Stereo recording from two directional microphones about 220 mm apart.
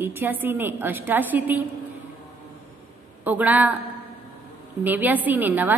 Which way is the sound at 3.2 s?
5° right (ahead or behind).